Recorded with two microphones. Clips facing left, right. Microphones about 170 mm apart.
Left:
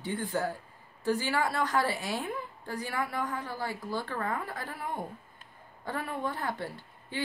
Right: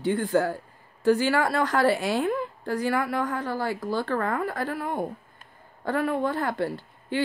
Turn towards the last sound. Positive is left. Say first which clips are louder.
# right 9 dB
turn(degrees=-80)